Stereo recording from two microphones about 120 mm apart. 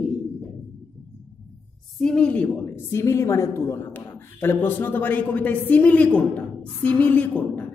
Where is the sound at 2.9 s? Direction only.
25° left (ahead or behind).